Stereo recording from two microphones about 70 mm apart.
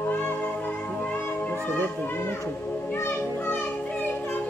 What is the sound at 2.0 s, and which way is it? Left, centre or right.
A child's voice, left.